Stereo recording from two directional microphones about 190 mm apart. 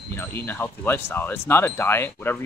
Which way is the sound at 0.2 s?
10° left (ahead or behind).